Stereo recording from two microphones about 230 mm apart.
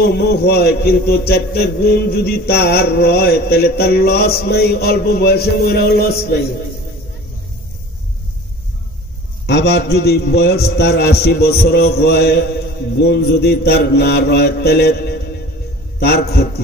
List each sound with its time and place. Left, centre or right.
0.0 s a man's voice: left
9.5 s a man's voice: left